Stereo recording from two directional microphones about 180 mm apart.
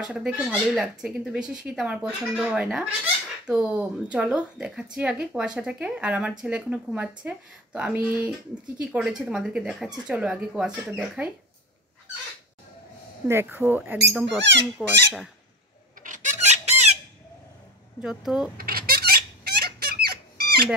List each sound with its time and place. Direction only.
0.0 s speech: 5° right (ahead or behind)
13.3 s speech: 15° right (ahead or behind)
16.0 s chicken: 45° right (ahead or behind)
18.0 s speech: 5° right (ahead or behind)
18.6 s a sound: 55° right (ahead or behind)